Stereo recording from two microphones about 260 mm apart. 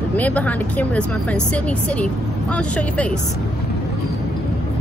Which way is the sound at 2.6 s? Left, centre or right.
Centre.